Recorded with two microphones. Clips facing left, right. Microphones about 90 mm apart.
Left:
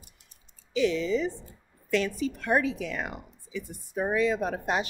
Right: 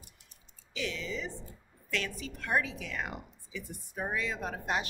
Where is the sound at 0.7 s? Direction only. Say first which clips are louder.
Left 12 dB; 25° left (ahead or behind).